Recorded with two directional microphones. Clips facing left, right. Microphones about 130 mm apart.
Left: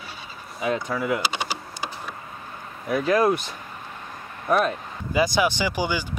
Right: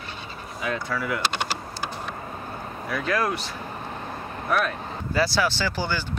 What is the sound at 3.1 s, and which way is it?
Speech, 15° left (ahead or behind).